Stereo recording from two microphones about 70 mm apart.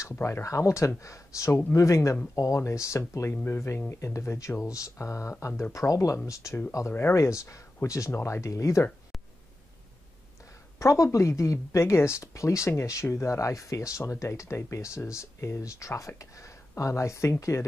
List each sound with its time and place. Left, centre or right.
0.0 s speech: left
6.9 s speech: left
7.2 s speech: left
10.8 s speech: left